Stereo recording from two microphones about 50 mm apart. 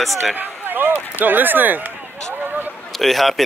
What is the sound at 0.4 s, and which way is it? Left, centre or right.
Speech, right.